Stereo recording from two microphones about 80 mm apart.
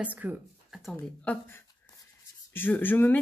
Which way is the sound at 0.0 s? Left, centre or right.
Centre.